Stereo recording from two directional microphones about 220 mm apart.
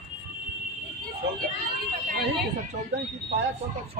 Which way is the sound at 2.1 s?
50° right (ahead or behind).